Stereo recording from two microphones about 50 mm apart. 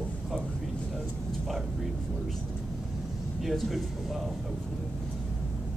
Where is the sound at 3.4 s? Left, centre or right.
Centre.